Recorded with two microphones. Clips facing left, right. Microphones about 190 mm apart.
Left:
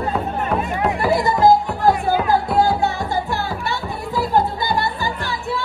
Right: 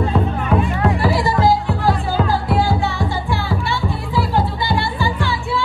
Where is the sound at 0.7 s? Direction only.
20° left (ahead or behind).